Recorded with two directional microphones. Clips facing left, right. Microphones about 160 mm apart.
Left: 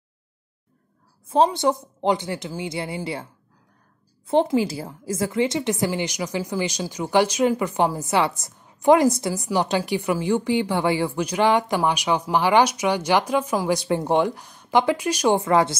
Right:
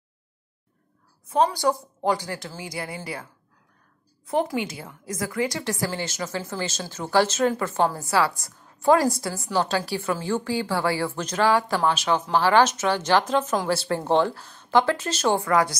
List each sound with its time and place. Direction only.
1.2 s speech: 30° left (ahead or behind)
4.3 s a woman's voice: 30° left (ahead or behind)